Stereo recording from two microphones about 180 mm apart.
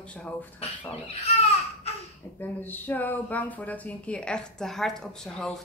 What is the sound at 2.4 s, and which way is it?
A woman's voice, 10° left (ahead or behind).